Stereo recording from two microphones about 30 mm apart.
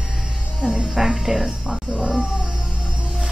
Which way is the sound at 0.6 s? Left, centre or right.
Right.